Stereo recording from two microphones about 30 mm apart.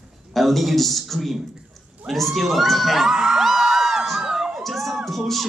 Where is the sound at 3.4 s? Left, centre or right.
Centre.